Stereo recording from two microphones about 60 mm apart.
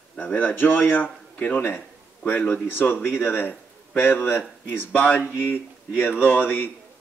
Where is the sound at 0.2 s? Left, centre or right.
Left.